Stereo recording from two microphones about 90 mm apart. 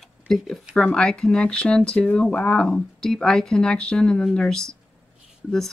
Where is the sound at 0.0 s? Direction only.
5° left (ahead or behind).